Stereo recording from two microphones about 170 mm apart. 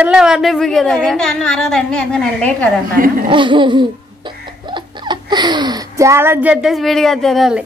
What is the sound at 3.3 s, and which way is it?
Laughter, 30° right (ahead or behind).